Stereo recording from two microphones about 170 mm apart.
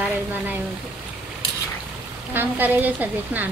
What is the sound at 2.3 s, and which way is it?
Speech, 10° right (ahead or behind).